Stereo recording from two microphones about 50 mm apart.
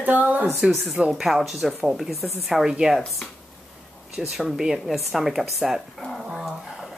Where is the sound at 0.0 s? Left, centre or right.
Right.